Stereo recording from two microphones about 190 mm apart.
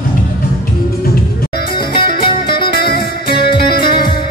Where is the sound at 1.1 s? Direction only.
50° left (ahead or behind).